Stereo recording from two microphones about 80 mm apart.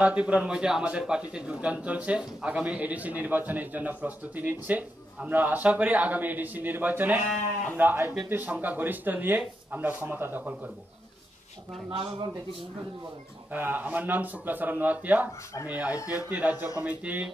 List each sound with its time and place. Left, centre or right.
0.0 s a man's voice: centre
13.5 s a man's voice: right
16.0 s speech: left
16.3 s a man's voice: right